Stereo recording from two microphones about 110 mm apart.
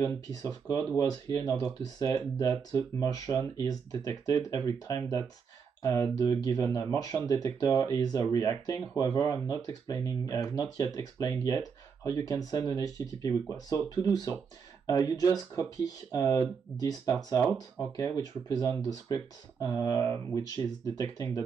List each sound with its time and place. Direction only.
0.0 s speech: 30° left (ahead or behind)